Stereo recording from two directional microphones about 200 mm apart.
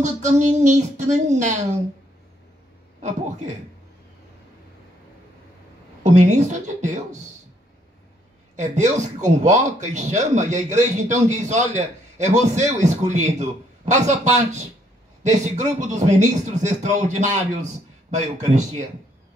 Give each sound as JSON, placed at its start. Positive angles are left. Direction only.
{"t": 0.0, "sound": "speech", "side_deg": -35}
{"t": 6.0, "sound": "speech", "side_deg": -35}
{"t": 8.5, "sound": "speech", "side_deg": -35}